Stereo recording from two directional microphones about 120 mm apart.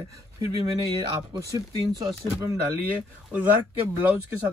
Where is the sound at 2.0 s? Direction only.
35° right (ahead or behind).